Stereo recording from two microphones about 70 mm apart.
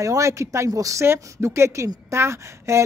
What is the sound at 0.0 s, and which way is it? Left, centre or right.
A man's voice, right.